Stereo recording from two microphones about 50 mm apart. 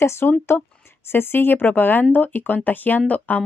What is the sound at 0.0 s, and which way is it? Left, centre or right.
Speech, left.